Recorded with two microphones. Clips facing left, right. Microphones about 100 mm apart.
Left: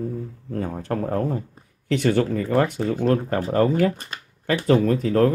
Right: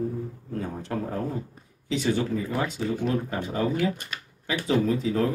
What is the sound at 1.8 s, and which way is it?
Speech, 60° left (ahead or behind).